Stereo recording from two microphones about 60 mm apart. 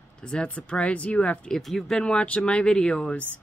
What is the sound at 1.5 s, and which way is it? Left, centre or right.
Speech, centre.